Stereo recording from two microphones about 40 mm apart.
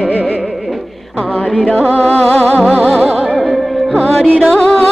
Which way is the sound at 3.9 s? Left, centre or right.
Centre.